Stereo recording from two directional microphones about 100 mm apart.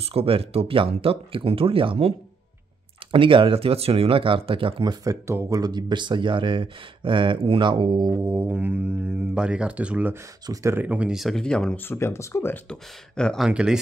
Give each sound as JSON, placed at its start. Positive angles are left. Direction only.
{"t": 0.0, "sound": "speech", "side_deg": -75}
{"t": 3.1, "sound": "speech", "side_deg": -60}
{"t": 5.0, "sound": "speech", "side_deg": -30}
{"t": 5.6, "sound": "speech", "side_deg": -45}
{"t": 8.1, "sound": "speech", "side_deg": -25}
{"t": 10.4, "sound": "speech", "side_deg": -35}
{"t": 10.8, "sound": "speech", "side_deg": -15}
{"t": 11.1, "sound": "speech", "side_deg": 0}
{"t": 11.9, "sound": "speech", "side_deg": 25}
{"t": 12.6, "sound": "speech", "side_deg": 10}
{"t": 13.4, "sound": "speech", "side_deg": -10}